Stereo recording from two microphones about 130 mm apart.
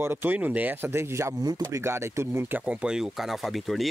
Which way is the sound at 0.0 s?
15° right (ahead or behind).